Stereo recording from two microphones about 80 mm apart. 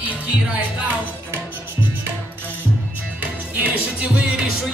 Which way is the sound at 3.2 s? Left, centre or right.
Centre.